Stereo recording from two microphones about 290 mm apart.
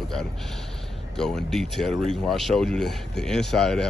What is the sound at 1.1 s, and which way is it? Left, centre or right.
Speech, centre.